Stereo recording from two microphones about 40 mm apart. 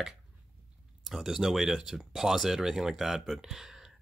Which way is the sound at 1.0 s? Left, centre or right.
Centre.